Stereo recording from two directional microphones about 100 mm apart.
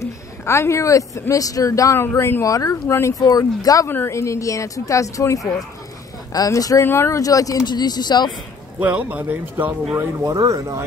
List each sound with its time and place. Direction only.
0.0 s speech: 30° left (ahead or behind)
3.8 s speech: 25° left (ahead or behind); by 8.3 s 45° left (ahead or behind)
8.7 s speech: 15° right (ahead or behind)
10.1 s speech: 35° right (ahead or behind)